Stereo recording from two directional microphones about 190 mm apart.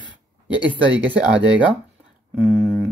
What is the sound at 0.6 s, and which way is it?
Speech, 10° right (ahead or behind).